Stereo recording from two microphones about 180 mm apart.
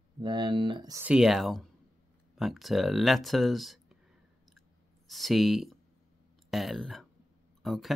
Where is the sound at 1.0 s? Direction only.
5° right (ahead or behind).